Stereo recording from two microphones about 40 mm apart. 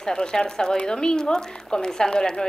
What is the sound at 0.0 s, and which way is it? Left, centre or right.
A woman's voice, centre.